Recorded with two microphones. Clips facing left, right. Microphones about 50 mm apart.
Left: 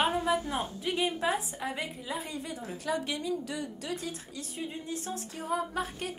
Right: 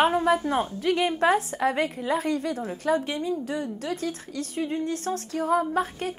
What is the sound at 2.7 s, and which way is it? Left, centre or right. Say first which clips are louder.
Speech: right 6 dB; right.